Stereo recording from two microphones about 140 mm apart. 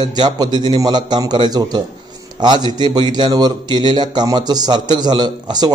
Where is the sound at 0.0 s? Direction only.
30° right (ahead or behind).